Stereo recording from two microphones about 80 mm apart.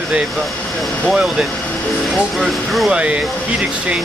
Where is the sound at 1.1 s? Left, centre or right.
Centre.